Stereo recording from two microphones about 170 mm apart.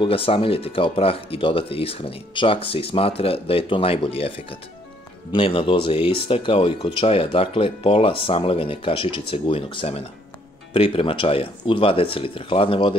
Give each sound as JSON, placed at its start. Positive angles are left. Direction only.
{"t": 0.0, "sound": "speech", "side_deg": 35}